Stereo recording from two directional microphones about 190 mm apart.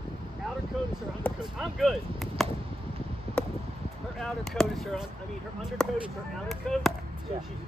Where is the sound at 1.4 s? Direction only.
Centre (ahead or behind).